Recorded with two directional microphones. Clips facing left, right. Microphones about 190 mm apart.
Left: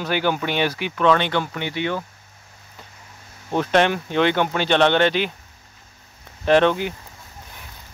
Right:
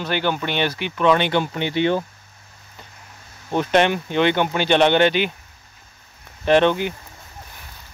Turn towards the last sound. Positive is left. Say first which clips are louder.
# even
turn(degrees=0)  # may be behind; listen again after turning